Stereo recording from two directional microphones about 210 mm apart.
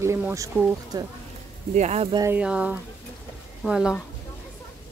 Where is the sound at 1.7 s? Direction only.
30° right (ahead or behind).